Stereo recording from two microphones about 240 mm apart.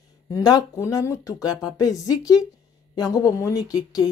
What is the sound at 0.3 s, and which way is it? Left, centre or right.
A woman's voice, centre.